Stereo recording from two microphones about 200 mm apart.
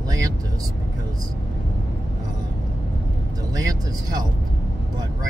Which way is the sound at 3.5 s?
20° right (ahead or behind).